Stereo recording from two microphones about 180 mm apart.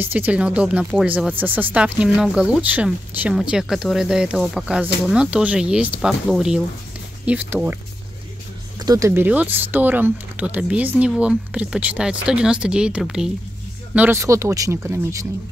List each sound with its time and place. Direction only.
0.0 s speech: 10° right (ahead or behind)
8.7 s speech: 20° right (ahead or behind)